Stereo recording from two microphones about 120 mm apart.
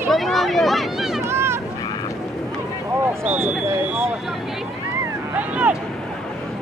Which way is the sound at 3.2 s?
15° right (ahead or behind).